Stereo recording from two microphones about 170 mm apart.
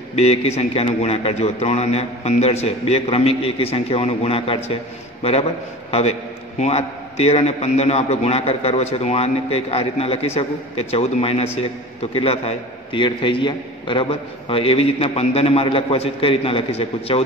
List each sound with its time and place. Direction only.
0.1 s a man's voice: 40° left (ahead or behind)
5.9 s a man's voice: 35° left (ahead or behind)